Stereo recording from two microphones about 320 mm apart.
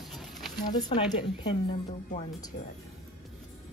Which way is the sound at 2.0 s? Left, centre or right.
Centre.